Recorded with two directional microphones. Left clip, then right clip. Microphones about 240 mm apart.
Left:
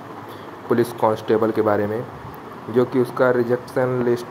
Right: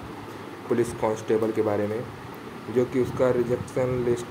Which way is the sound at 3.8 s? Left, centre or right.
Centre.